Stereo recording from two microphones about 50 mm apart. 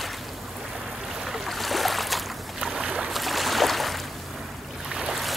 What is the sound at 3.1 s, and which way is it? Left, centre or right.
Boat, centre.